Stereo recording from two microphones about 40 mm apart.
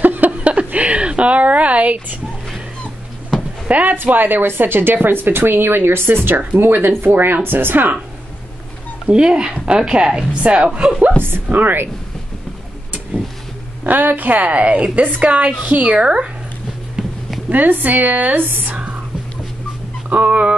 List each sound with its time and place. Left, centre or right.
0.0 s a sound: right
0.4 s a sound: right
3.6 s speech: right
3.9 s a woman's voice: right
9.1 s speech: right
10.4 s a woman's voice: right
10.7 s speech: right
11.4 s a woman's voice: right
13.8 s a woman's voice: right
17.5 s a woman's voice: right
20.1 s speech: right